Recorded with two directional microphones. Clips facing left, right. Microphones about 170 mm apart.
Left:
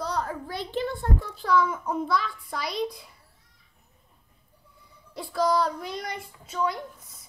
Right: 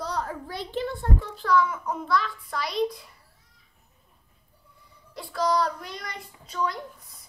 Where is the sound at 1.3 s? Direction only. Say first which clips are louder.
Even; centre (ahead or behind).